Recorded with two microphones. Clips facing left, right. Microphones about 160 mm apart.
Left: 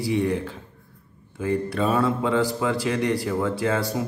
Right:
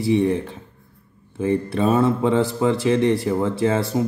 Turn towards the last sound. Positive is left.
turn(degrees=-25)  # may be behind; listen again after turning